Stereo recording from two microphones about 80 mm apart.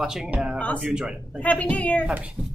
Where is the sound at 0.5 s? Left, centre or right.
Centre.